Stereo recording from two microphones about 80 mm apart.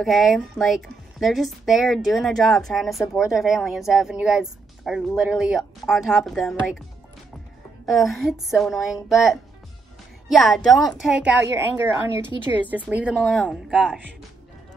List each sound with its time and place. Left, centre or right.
0.0 s speech: centre
7.8 s speech: centre
11.1 s speech: centre
11.8 s a woman's voice: right
13.1 s speech: centre